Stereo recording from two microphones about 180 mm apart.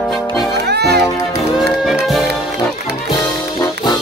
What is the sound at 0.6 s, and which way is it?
Music, 65° right (ahead or behind).